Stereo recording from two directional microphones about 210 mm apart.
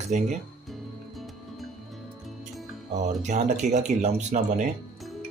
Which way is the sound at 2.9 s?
35° right (ahead or behind).